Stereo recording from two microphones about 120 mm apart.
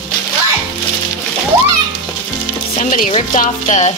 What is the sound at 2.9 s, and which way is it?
Music, 90° left.